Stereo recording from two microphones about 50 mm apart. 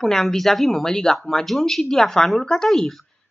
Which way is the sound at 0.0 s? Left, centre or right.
Centre.